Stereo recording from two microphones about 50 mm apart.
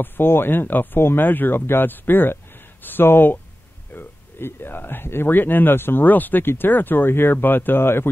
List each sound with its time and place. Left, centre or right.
0.0 s speech: left